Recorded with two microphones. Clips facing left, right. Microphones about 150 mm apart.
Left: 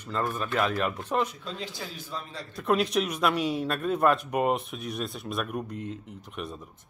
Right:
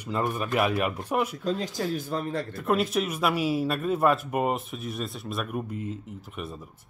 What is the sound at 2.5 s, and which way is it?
Speech, centre (ahead or behind).